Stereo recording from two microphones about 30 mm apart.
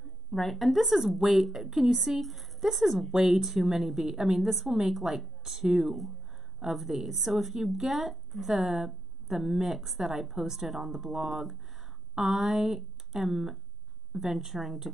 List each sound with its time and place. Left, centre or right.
0.3 s a woman's voice: centre
0.7 s a woman's voice: centre
3.1 s a woman's voice: centre